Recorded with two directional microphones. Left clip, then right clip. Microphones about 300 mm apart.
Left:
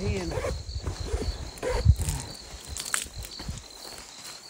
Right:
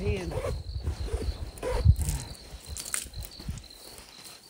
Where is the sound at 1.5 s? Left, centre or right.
Left.